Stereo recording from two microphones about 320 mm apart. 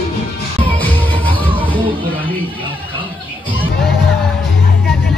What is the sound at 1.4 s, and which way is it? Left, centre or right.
Music, centre.